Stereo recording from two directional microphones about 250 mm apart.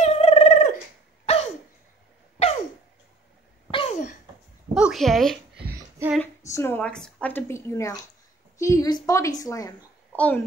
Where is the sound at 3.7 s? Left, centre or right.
Left.